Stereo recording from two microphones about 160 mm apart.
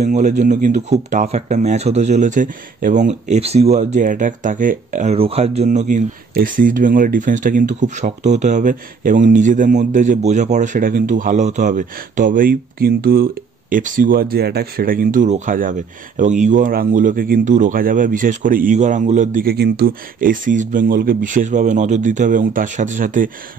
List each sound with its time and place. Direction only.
0.0 s speech: 45° right (ahead or behind)
5.1 s speech: 40° right (ahead or behind)
19.4 s speech: 85° right; by 23.3 s 55° right (ahead or behind)